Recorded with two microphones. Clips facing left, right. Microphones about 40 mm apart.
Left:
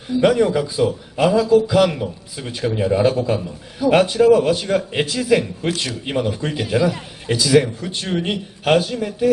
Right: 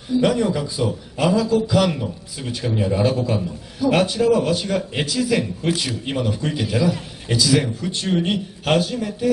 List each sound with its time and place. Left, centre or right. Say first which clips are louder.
0.2 s a man's voice: left 5 dB; centre